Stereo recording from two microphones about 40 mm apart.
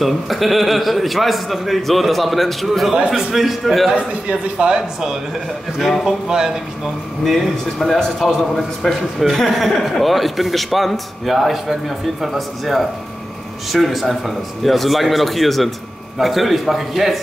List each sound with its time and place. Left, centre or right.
0.0 s a man's voice: centre
3.1 s a man's voice: centre
3.9 s a man's voice: right
5.8 s a man's voice: centre
7.2 s a man's voice: centre